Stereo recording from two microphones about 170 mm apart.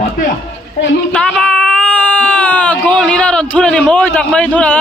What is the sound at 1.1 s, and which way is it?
Speech, 5° left (ahead or behind).